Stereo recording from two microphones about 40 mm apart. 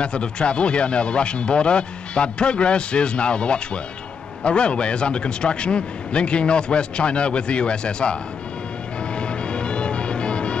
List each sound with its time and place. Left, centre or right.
0.0 s speech: left
9.1 s music: left